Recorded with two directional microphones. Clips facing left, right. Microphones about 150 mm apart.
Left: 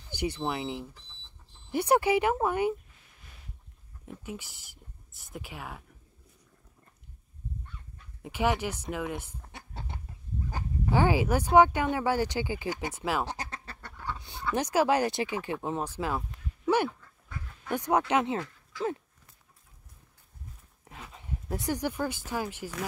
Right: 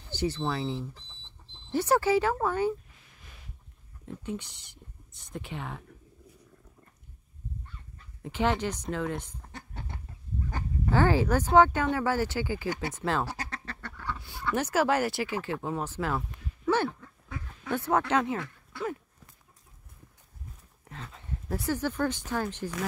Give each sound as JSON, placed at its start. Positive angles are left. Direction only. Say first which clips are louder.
{"t": 0.1, "sound": "speech", "louder": "right 1 dB", "side_deg": 15}
{"t": 4.0, "sound": "speech", "louder": "right 4 dB", "side_deg": 10}
{"t": 8.2, "sound": "speech", "louder": "even", "side_deg": 10}
{"t": 10.5, "sound": "speech", "louder": "even", "side_deg": 15}
{"t": 13.2, "sound": "duck", "louder": "even", "side_deg": 20}
{"t": 14.5, "sound": "speech", "louder": "left 1 dB", "side_deg": 15}
{"t": 18.4, "sound": "a sound", "louder": "left 2 dB", "side_deg": -60}
{"t": 20.9, "sound": "speech", "louder": "right 1 dB", "side_deg": 15}